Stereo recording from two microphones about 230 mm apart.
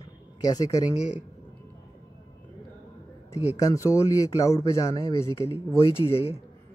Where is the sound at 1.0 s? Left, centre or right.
Centre.